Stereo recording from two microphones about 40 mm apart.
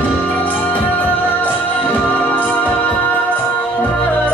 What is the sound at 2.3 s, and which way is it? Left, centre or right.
Music, left.